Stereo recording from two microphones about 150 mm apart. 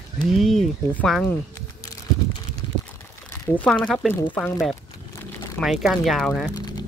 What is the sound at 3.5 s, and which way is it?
Speech, 10° left (ahead or behind).